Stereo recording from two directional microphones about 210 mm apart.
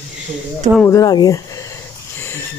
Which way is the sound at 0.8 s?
15° left (ahead or behind).